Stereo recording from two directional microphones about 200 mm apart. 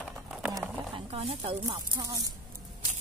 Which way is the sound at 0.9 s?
30° right (ahead or behind).